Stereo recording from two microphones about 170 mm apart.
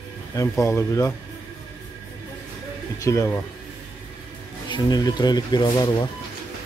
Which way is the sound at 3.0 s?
20° left (ahead or behind).